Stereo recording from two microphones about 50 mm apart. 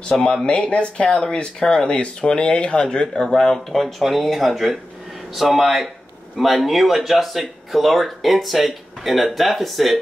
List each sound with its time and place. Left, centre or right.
0.1 s speech: centre
0.5 s speech: left
3.1 s speech: centre